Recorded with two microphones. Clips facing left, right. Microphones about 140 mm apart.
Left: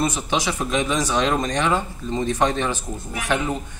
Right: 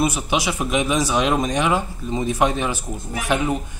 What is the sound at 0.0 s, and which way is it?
Speech, 10° right (ahead or behind).